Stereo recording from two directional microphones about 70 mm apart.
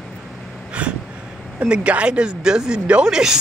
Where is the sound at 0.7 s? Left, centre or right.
Centre.